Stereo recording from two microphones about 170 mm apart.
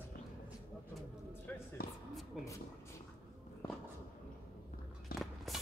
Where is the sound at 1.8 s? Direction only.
65° left (ahead or behind).